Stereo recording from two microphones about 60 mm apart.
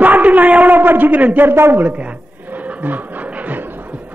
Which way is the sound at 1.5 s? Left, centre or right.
Right.